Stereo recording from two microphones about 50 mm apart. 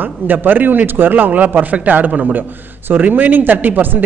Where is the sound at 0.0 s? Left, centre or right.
Right.